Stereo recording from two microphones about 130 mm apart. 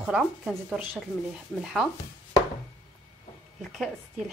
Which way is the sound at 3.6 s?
Centre (ahead or behind).